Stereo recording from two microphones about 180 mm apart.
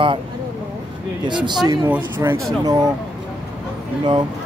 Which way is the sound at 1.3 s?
25° right (ahead or behind).